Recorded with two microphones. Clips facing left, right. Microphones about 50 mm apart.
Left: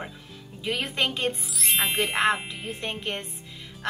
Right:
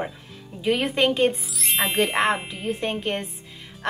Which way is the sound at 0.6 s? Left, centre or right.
Right.